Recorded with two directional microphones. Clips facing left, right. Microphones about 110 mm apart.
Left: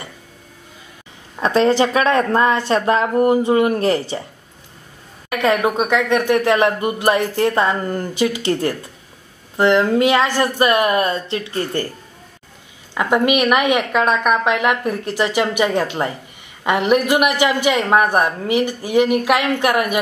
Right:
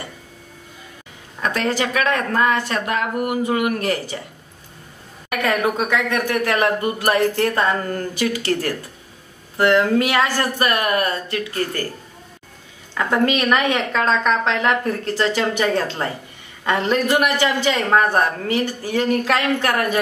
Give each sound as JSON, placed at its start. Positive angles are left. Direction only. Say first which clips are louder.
{"t": 1.4, "sound": "speech", "louder": "left 7 dB", "side_deg": 30}
{"t": 5.3, "sound": "speech", "louder": "left 3 dB", "side_deg": 20}
{"t": 12.9, "sound": "a man's voice", "louder": "left 3 dB", "side_deg": 15}